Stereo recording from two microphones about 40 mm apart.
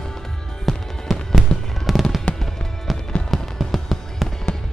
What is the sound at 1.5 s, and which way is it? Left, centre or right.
Fireworks, centre.